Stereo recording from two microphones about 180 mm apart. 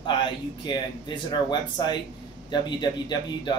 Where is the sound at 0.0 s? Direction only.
25° left (ahead or behind).